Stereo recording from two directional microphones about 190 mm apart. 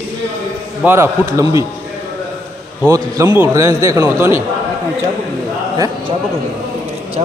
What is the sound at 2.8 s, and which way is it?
A man's voice, 20° right (ahead or behind).